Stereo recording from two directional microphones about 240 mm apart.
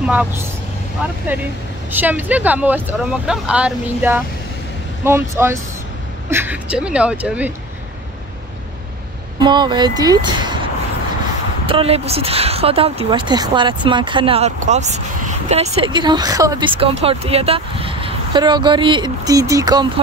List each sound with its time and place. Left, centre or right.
0.0 s speech: centre
1.9 s speech: centre
9.4 s speech: centre